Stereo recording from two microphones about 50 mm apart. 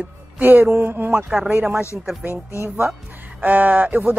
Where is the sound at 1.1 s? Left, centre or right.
Centre.